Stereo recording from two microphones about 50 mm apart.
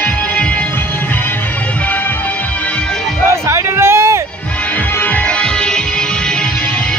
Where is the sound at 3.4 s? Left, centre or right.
Right.